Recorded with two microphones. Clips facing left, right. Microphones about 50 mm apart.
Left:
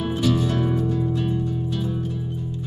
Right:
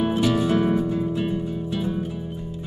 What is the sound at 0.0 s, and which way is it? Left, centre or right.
Music, centre.